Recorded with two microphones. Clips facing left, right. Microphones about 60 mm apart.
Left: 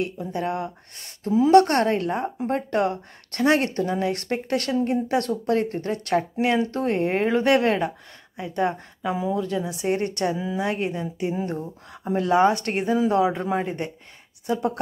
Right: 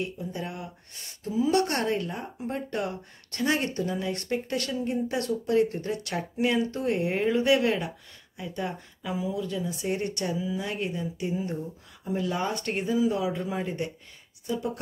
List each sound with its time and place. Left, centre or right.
0.0 s a woman's voice: left
8.4 s a woman's voice: left
14.4 s speech: left